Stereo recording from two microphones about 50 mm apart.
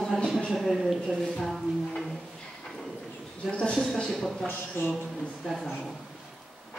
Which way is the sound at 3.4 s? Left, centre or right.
Centre.